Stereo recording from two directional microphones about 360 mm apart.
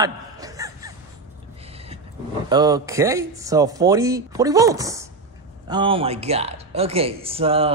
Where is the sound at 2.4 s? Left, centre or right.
Centre.